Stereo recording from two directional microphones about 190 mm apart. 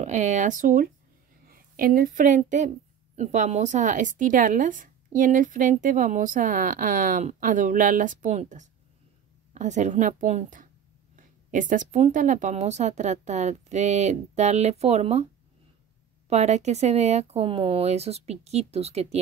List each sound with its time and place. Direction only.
0.0 s a woman's voice: 40° right (ahead or behind)
16.3 s a woman's voice: 35° right (ahead or behind)